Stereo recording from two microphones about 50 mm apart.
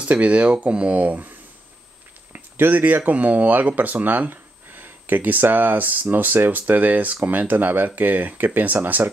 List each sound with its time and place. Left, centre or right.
0.0 s speech: right
2.3 s speech: right